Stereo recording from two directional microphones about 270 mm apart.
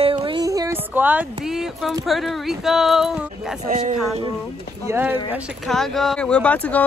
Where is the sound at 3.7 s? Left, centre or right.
Right.